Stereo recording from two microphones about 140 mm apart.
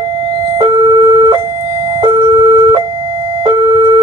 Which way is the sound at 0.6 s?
35° right (ahead or behind).